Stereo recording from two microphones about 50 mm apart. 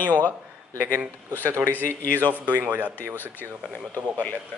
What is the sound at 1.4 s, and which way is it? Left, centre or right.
Speech, right.